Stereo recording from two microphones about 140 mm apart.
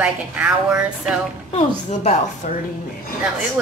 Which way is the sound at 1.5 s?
55° left (ahead or behind).